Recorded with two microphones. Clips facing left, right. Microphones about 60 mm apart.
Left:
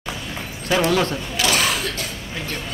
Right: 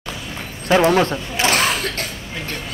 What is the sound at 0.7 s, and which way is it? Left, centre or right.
Speech, right.